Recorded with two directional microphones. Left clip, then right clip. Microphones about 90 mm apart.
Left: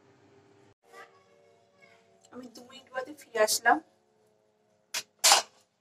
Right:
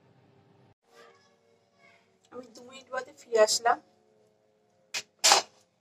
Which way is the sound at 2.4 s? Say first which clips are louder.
Right 2 dB; 35° right (ahead or behind).